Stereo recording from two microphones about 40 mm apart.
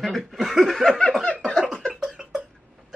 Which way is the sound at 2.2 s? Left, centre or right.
Right.